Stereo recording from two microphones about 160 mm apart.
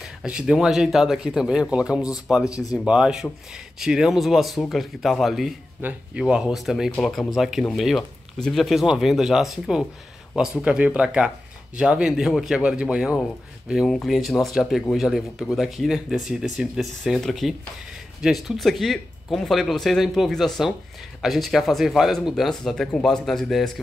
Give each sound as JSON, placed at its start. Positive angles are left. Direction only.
{"t": 0.2, "sound": "speech", "side_deg": -5}
{"t": 2.5, "sound": "speech", "side_deg": 20}
{"t": 2.8, "sound": "speech", "side_deg": -5}